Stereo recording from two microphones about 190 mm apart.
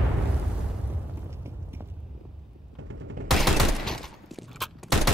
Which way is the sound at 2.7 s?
90° right.